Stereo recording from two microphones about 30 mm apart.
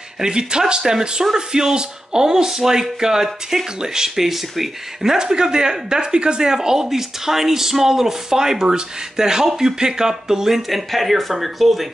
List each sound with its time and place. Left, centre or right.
0.2 s speech: right
4.3 s speech: centre
5.1 s speech: right
10.9 s speech: centre